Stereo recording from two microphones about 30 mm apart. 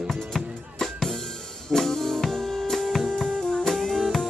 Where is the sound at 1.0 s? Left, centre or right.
Centre.